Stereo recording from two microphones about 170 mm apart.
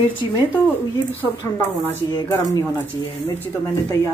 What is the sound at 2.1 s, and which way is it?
Speech, 25° left (ahead or behind).